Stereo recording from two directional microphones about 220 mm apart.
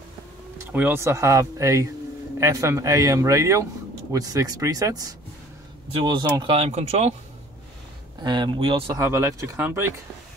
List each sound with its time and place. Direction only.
0.7 s speech: 10° right (ahead or behind); by 7.2 s 30° right (ahead or behind)
8.2 s speech: 20° right (ahead or behind)
9.0 s speech: 10° right (ahead or behind)